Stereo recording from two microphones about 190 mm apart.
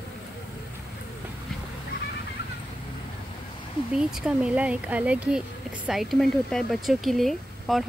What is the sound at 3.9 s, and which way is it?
Speech, 5° right (ahead or behind).